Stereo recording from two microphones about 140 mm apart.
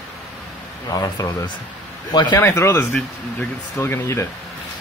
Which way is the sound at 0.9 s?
25° left (ahead or behind).